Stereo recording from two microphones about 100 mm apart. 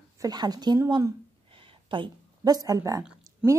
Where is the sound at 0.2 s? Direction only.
40° right (ahead or behind).